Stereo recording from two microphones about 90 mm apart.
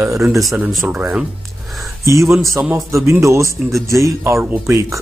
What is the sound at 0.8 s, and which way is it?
Speech, 15° right (ahead or behind).